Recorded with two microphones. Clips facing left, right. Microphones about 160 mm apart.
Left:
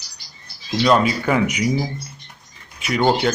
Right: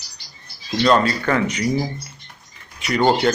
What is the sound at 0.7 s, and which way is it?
Speech, 5° left (ahead or behind).